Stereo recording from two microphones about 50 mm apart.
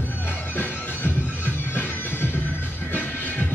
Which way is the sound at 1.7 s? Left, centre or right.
Left.